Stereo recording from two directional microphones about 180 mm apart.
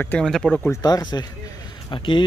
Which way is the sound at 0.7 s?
20° left (ahead or behind).